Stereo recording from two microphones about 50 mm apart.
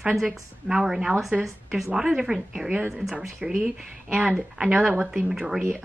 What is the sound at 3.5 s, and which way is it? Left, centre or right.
Speech, right.